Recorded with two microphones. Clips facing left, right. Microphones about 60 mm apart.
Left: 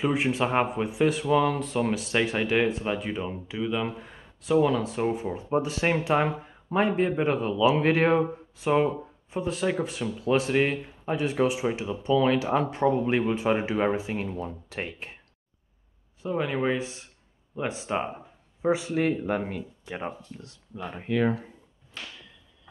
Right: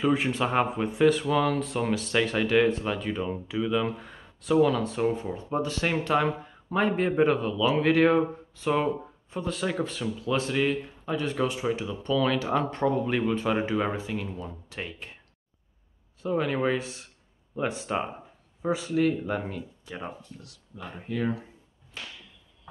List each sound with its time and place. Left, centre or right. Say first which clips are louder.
0.0 s speech: even; centre
5.0 s speech: even; centre
7.0 s speech: right 2 dB; centre
7.4 s speech: left 2 dB; centre
8.1 s speech: even; centre
10.2 s speech: left 3 dB; left
11.2 s speech: left 3 dB; centre
16.3 s speech: right 1 dB; centre
18.6 s speech: left 1 dB; left
20.7 s speech: left 5 dB; left